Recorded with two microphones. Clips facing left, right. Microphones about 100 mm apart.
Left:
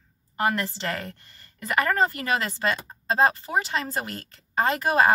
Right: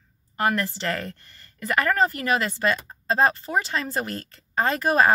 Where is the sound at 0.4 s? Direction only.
20° left (ahead or behind).